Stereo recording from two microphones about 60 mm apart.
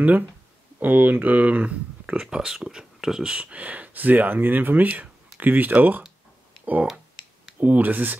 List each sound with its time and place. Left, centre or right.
0.7 s speech: right
2.2 s speech: centre; by 8.2 s right